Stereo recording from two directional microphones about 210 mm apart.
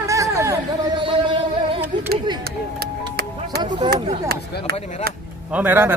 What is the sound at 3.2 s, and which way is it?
Music, 50° right (ahead or behind).